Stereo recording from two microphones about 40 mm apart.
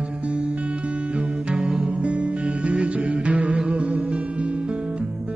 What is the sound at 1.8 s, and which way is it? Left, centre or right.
Music, right.